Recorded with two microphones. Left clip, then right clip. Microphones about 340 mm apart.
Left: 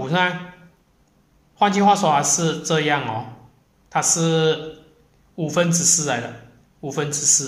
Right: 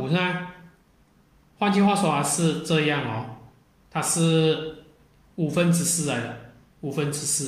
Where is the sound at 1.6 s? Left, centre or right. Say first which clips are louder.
Left 6 dB; centre.